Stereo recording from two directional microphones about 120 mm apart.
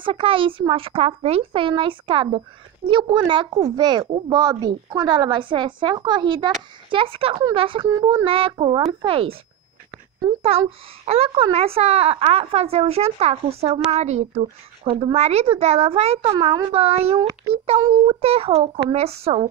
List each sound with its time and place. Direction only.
0.0 s a woman's voice: 50° right (ahead or behind)
11.1 s speech: 55° right (ahead or behind)
14.9 s speech: 50° right (ahead or behind)
16.3 s a woman's voice: 35° right (ahead or behind)
16.7 s speech: 55° right (ahead or behind)